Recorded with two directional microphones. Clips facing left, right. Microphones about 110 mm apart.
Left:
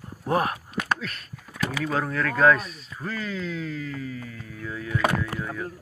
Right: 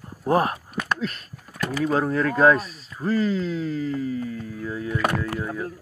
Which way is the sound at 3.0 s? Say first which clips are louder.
Right 8 dB; 35° right (ahead or behind).